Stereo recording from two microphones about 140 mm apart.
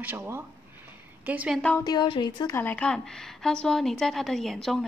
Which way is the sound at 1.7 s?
25° left (ahead or behind).